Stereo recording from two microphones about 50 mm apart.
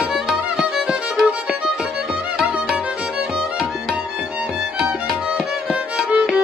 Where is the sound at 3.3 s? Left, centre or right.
Centre.